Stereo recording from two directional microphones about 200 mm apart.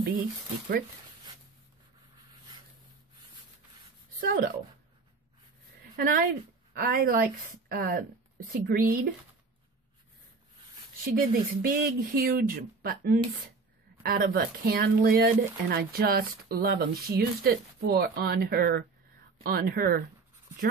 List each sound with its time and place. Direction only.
4.2 s speech: 50° right (ahead or behind)
5.9 s speech: 45° right (ahead or behind)
11.1 s speech: 45° right (ahead or behind)